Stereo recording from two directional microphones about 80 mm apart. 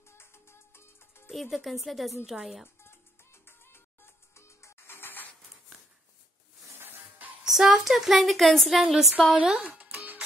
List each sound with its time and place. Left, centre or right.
0.0 s music: left
1.3 s a woman's voice: centre
2.8 s music: left
6.8 s music: right
7.4 s a woman's voice: centre
9.3 s music: centre